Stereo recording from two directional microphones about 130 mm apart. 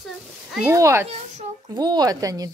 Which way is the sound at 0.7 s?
20° right (ahead or behind).